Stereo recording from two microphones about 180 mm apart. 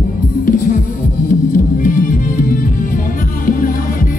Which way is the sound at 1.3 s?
50° left (ahead or behind).